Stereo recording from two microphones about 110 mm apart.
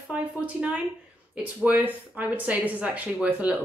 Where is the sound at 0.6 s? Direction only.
10° right (ahead or behind).